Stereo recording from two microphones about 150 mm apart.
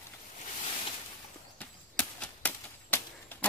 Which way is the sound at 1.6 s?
5° left (ahead or behind).